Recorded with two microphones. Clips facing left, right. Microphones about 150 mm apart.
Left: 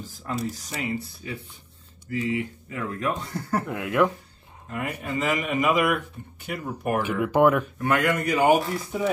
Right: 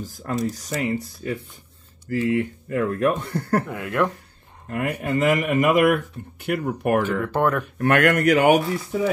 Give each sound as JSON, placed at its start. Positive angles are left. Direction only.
{"t": 0.0, "sound": "speech", "side_deg": -45}
{"t": 3.6, "sound": "speech", "side_deg": 0}
{"t": 4.6, "sound": "speech", "side_deg": -55}
{"t": 7.1, "sound": "speech", "side_deg": 10}
{"t": 7.8, "sound": "speech", "side_deg": -70}